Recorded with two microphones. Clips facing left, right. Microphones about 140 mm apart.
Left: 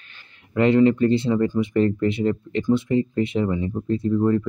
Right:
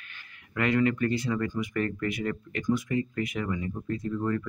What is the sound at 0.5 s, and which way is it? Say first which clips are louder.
Speech: left 9 dB; 25° left (ahead or behind).